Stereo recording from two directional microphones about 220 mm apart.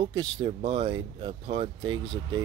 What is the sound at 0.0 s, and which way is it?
A man's voice, 20° right (ahead or behind).